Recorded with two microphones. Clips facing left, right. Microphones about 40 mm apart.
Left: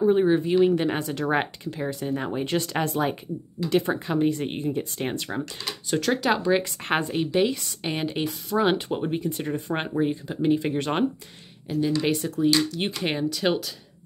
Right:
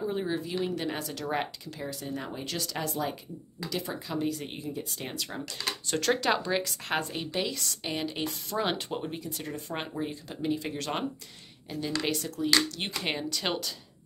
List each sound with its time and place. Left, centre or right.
0.0 s speech: left
5.9 s speech: centre
6.9 s speech: left
8.2 s speech: centre
9.0 s speech: left; by 13.6 s centre